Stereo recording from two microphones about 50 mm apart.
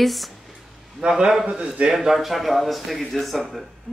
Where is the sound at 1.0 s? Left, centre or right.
Centre.